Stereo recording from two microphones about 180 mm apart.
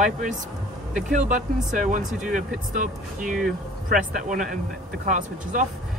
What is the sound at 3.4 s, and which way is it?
Speech, 50° right (ahead or behind).